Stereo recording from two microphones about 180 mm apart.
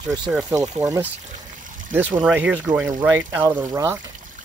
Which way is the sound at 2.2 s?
10° right (ahead or behind).